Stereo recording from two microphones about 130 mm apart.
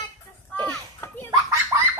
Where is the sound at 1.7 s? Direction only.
20° right (ahead or behind).